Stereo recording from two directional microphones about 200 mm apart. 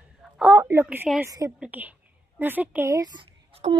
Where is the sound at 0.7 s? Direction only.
10° right (ahead or behind).